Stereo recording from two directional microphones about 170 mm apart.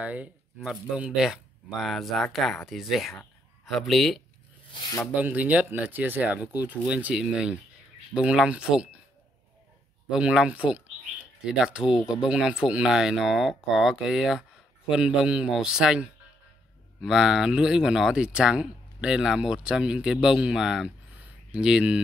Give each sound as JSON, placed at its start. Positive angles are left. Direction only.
{"t": 0.0, "sound": "speech", "side_deg": -10}
{"t": 4.7, "sound": "speech", "side_deg": 25}
{"t": 5.0, "sound": "speech", "side_deg": -10}
{"t": 10.0, "sound": "speech", "side_deg": -5}